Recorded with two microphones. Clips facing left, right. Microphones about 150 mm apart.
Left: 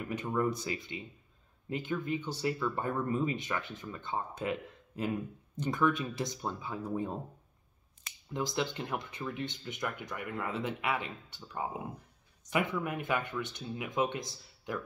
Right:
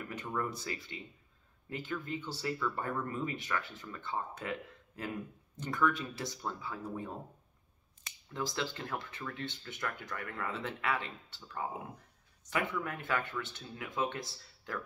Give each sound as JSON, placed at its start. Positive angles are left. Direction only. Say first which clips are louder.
{"t": 0.0, "sound": "speech", "louder": "left 6 dB", "side_deg": 20}
{"t": 8.3, "sound": "speech", "louder": "left 3 dB", "side_deg": 20}